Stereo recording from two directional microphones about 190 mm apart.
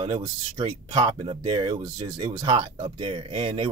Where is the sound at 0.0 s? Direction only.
30° right (ahead or behind).